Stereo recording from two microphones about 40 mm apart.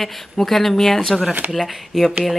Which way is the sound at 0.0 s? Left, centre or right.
Centre.